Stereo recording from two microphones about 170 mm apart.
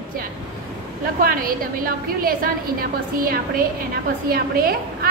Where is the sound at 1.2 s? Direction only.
55° right (ahead or behind).